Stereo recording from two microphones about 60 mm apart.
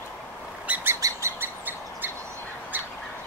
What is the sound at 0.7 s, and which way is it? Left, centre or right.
Bird, right.